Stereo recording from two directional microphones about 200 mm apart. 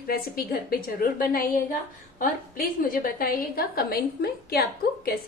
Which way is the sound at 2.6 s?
45° left (ahead or behind).